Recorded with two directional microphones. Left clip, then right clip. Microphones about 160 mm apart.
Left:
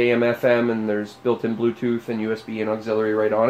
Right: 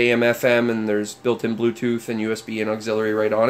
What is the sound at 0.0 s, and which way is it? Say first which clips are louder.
Speech: right 1 dB; 20° right (ahead or behind).